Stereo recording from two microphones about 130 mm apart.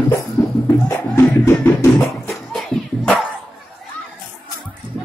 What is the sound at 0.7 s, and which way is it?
Music, 20° left (ahead or behind).